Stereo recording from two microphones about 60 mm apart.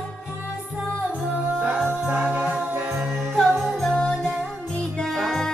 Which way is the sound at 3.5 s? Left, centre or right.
Centre.